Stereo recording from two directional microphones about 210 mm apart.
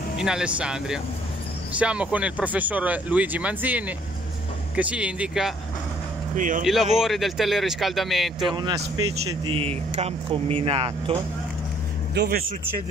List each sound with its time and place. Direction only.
0.2 s a man's voice: 5° right (ahead or behind)
6.3 s speech: 40° right (ahead or behind)
6.6 s a man's voice: centre (ahead or behind)
8.5 s speech: 20° right (ahead or behind)
12.1 s speech: 50° right (ahead or behind)